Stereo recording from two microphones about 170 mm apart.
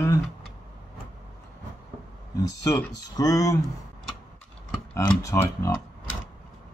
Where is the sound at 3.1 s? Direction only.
20° left (ahead or behind).